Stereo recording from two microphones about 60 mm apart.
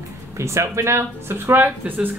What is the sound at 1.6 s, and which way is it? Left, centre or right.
Speech, right.